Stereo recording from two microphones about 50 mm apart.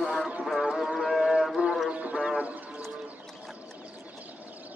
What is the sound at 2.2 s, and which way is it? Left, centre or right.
Music, centre.